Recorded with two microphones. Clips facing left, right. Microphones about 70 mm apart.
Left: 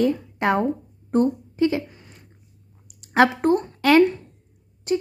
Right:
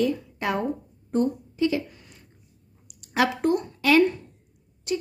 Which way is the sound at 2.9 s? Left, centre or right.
Left.